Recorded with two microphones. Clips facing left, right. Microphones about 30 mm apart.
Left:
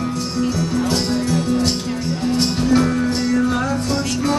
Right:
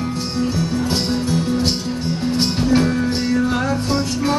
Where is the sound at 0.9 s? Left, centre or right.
Centre.